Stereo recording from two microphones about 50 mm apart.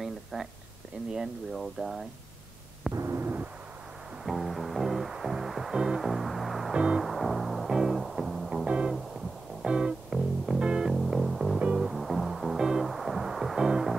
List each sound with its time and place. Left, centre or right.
0.0 s a sound: centre
1.1 s speech: centre
2.9 s a sound: right
4.2 s music: centre
6.7 s music: centre
7.0 s music: centre
8.6 s music: right
10.1 s music: centre
10.6 s music: centre
10.9 s music: centre